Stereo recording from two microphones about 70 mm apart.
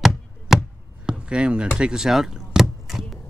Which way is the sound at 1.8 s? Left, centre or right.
Centre.